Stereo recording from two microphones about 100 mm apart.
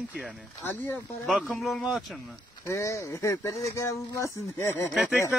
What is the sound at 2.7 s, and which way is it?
Speech, 30° left (ahead or behind).